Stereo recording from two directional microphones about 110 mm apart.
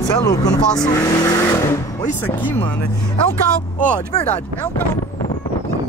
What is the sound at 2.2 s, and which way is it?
Speech, 15° left (ahead or behind).